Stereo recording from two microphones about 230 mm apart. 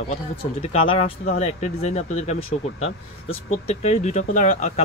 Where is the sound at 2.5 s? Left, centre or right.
Left.